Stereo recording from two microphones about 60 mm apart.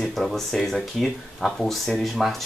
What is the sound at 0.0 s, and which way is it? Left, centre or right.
Speech, centre.